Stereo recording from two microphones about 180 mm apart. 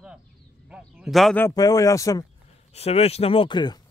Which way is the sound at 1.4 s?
20° left (ahead or behind).